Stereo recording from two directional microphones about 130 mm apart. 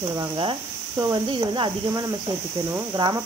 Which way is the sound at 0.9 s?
35° right (ahead or behind).